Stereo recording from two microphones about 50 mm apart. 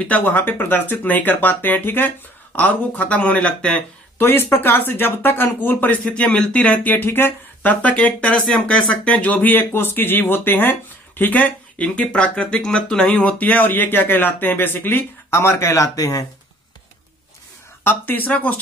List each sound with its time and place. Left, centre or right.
0.1 s speech: left
4.2 s speech: left
6.5 s speech: left
7.1 s speech: left
7.6 s speech: left
11.8 s speech: left
13.4 s speech: left
17.8 s speech: left